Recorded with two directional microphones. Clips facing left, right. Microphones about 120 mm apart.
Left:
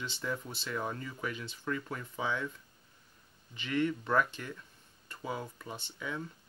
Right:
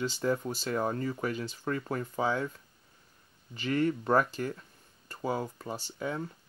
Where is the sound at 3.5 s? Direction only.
40° right (ahead or behind).